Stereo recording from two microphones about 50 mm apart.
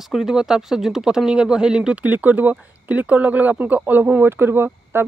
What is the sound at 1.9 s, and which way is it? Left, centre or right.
Speech, right.